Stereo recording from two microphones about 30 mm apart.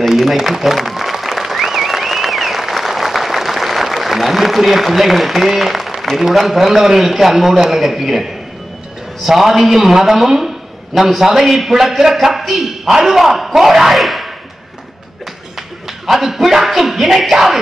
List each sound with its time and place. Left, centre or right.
0.2 s applause: centre
6.1 s a man's voice: centre
16.1 s speech: centre